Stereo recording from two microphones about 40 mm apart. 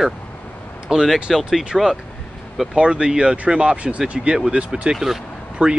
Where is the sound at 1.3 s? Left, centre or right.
Centre.